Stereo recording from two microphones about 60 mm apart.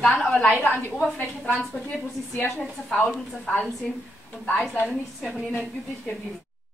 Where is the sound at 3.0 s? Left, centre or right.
Centre.